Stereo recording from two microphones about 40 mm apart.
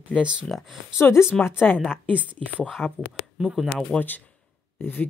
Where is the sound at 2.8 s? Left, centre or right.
Centre.